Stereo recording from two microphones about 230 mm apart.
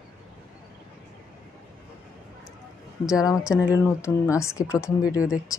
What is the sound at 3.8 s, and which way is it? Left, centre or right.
Speech, centre.